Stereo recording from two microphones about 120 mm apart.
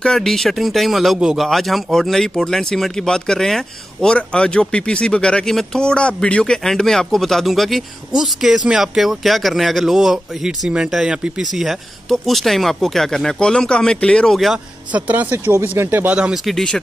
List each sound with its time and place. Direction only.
0.0 s speech: 5° left (ahead or behind)
14.9 s a man's voice: 10° right (ahead or behind)
16.2 s a man's voice: 5° right (ahead or behind)
16.5 s speech: 5° left (ahead or behind)